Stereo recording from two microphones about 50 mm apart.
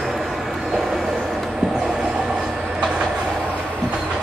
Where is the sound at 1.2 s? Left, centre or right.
Centre.